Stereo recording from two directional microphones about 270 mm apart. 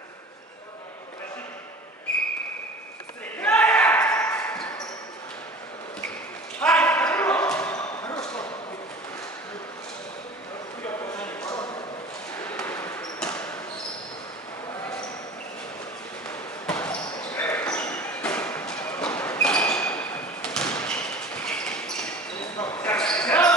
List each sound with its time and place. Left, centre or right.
3.3 s basketball bounce: centre
6.6 s basketball bounce: centre
10.9 s a sound: centre
12.4 s basketball bounce: centre
16.3 s basketball bounce: centre
17.2 s a sound: centre
22.7 s basketball bounce: centre